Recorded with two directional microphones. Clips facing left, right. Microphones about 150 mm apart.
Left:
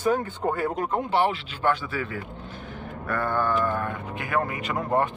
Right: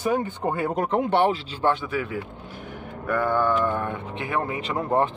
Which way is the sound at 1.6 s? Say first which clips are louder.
Right 1 dB; 20° right (ahead or behind).